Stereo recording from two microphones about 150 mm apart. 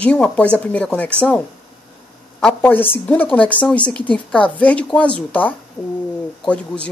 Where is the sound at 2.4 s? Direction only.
15° left (ahead or behind).